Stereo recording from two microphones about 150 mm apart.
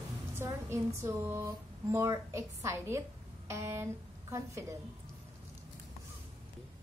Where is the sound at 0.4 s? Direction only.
15° right (ahead or behind).